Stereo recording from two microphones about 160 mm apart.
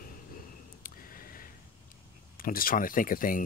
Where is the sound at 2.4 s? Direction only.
65° left (ahead or behind).